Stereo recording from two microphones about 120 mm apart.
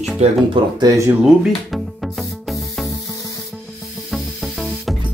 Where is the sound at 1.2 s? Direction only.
Centre (ahead or behind).